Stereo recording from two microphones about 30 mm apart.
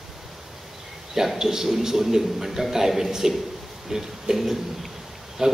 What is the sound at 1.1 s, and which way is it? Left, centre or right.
A man's voice, centre.